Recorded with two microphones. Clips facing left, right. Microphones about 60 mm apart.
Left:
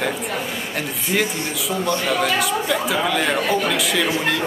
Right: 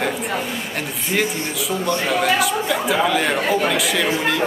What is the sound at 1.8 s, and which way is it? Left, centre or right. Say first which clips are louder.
Speech: even; centre.